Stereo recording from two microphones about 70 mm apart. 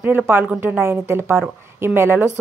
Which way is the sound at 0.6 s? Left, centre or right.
Right.